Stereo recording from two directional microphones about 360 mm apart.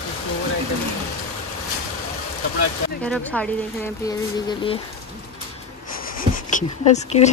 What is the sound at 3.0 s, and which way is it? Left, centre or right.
Speech, centre.